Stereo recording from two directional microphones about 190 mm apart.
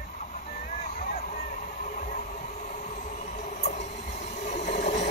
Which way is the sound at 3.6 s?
40° left (ahead or behind).